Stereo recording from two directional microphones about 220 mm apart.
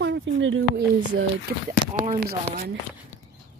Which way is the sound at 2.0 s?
35° right (ahead or behind).